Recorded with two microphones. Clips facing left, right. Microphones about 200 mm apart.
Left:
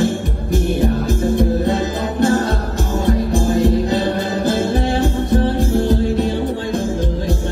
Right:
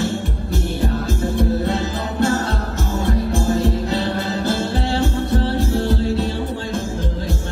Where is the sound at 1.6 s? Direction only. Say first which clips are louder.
Left 4 dB; 15° left (ahead or behind).